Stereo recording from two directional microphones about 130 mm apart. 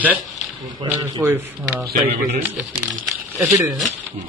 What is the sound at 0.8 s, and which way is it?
Speech, 35° right (ahead or behind).